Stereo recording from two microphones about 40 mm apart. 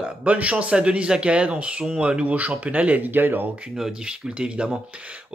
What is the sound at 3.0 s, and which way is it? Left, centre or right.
Speech, right.